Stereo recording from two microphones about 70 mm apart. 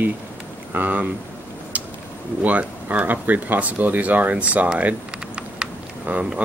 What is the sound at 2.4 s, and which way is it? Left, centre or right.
Speech, right.